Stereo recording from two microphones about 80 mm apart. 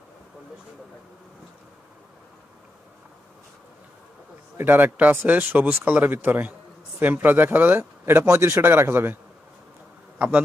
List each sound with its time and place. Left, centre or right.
4.6 s speech: right